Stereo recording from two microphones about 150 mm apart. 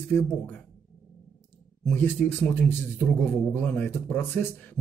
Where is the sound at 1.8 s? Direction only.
15° left (ahead or behind).